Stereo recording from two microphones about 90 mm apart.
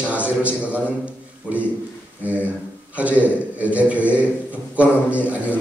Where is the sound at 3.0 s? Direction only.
15° right (ahead or behind).